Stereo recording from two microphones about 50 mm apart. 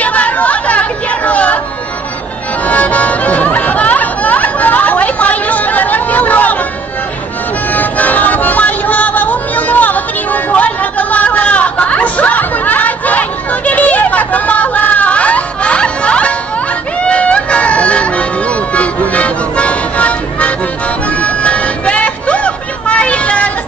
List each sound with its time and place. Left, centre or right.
0.0 s chatter: left
2.6 s music: left
7.7 s music: left